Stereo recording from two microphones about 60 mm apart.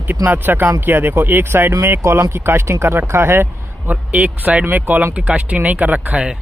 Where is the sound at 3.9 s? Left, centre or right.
Right.